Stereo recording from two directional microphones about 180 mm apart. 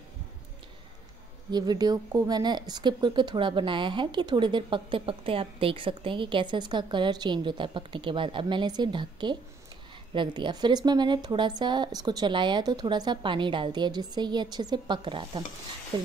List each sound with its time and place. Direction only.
1.5 s speech: 20° right (ahead or behind)